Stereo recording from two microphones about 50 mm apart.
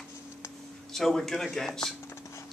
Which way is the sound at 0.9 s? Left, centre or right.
Centre.